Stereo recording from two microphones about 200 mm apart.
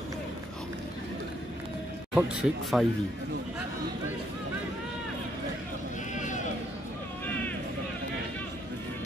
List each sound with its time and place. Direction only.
2.1 s speech: 5° right (ahead or behind)
6.1 s sheep: 40° left (ahead or behind)